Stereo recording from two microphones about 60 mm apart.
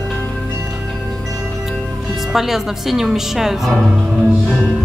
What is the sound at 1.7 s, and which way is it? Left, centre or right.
Speech, centre.